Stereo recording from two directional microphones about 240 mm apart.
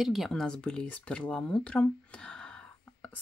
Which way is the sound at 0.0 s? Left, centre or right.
Centre.